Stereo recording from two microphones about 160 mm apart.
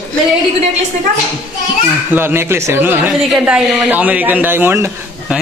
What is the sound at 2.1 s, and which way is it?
Speech, 15° right (ahead or behind).